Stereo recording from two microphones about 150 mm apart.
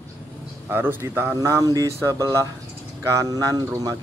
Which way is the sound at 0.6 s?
15° right (ahead or behind).